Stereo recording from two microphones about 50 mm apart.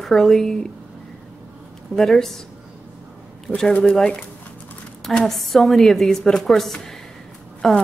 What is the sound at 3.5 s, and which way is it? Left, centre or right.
Speech, left.